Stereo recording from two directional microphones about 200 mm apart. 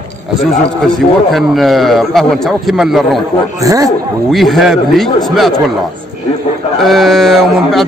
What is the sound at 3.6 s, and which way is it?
Speech, 15° right (ahead or behind).